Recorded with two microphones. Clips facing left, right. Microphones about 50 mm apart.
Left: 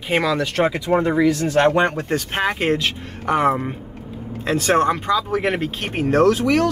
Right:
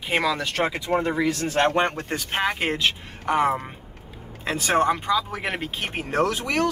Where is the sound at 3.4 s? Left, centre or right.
Centre.